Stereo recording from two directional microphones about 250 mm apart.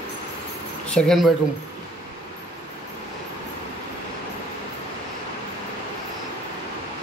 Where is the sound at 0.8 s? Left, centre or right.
Centre.